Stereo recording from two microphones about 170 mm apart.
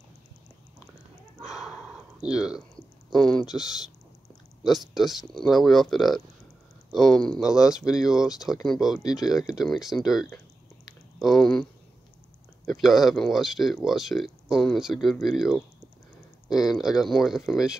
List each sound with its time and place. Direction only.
1.4 s a sound: 5° right (ahead or behind)
3.1 s speech: 5° left (ahead or behind)
4.6 s speech: centre (ahead or behind)
9.0 s speech: 25° left (ahead or behind)
9.6 s speech: centre (ahead or behind)
12.6 s speech: centre (ahead or behind)
16.5 s speech: centre (ahead or behind)